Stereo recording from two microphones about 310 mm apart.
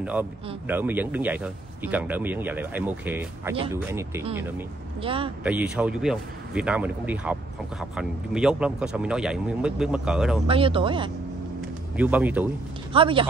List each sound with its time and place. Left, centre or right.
0.0 s speech: centre
5.4 s speech: centre
10.4 s speech: centre
12.0 s speech: centre
12.9 s speech: centre